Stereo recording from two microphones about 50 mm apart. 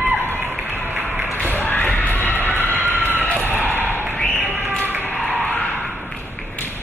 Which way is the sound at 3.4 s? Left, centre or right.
Right.